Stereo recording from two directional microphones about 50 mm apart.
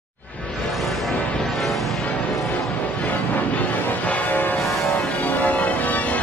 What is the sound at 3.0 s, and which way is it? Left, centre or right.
Change ringing, left.